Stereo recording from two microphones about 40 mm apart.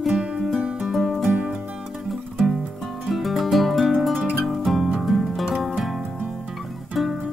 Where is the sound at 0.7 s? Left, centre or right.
Centre.